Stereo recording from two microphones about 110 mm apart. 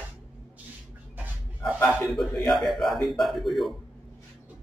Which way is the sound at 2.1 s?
Centre (ahead or behind).